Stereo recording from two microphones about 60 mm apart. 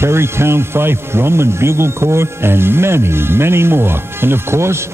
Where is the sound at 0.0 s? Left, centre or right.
Right.